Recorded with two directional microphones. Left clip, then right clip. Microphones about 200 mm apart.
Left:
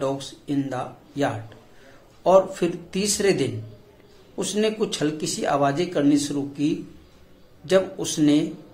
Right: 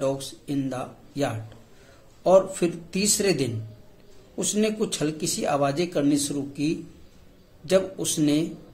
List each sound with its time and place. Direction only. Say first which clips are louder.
0.2 s speech: left 2 dB; 15° right (ahead or behind)